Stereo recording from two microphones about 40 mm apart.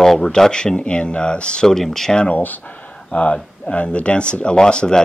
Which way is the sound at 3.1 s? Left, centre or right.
Left.